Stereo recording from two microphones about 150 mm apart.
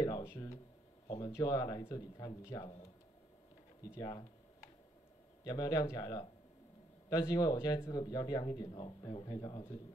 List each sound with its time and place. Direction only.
0.0 s speech: 20° left (ahead or behind)
1.0 s speech: 30° left (ahead or behind)
3.9 s speech: 20° left (ahead or behind)
5.4 s speech: 25° left (ahead or behind)